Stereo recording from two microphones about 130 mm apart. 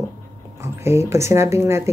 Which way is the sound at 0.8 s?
20° right (ahead or behind).